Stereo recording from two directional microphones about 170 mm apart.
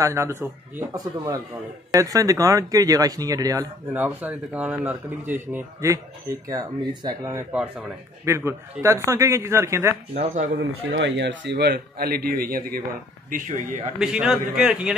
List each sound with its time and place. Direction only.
0.0 s speech: 15° right (ahead or behind)
10.1 s speech: 45° right (ahead or behind)
10.6 s a man's voice: 85° right; by 12.8 s 60° right (ahead or behind)
13.9 s a man's voice: 5° right (ahead or behind)